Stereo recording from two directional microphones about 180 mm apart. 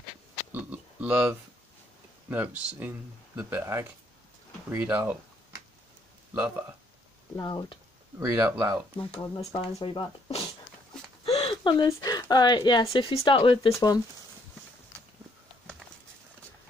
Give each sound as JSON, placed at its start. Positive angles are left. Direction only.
{"t": 0.5, "sound": "a sound", "side_deg": -10}
{"t": 2.2, "sound": "speech", "side_deg": -10}
{"t": 7.3, "sound": "speech", "side_deg": 25}
{"t": 8.2, "sound": "speech", "side_deg": -15}
{"t": 8.9, "sound": "speech", "side_deg": 15}
{"t": 9.5, "sound": "speech", "side_deg": 25}
{"t": 11.2, "sound": "a sound", "side_deg": 35}
{"t": 11.8, "sound": "speech", "side_deg": 20}